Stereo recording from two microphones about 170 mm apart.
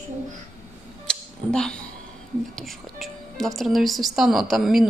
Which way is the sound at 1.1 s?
5° left (ahead or behind).